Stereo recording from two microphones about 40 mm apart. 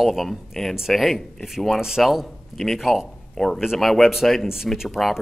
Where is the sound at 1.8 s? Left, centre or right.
Centre.